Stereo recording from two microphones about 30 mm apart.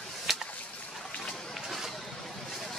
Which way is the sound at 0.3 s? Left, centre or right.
Centre.